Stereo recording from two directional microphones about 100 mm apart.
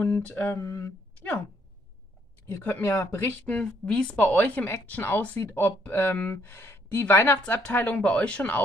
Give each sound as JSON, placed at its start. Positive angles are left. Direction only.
{"t": 0.2, "sound": "speech", "side_deg": 15}
{"t": 0.6, "sound": "speech", "side_deg": 30}
{"t": 2.5, "sound": "speech", "side_deg": 25}